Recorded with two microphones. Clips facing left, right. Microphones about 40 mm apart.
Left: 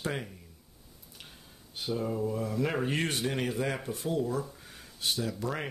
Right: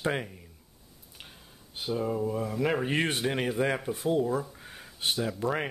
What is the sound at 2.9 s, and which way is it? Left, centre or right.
Speech, right.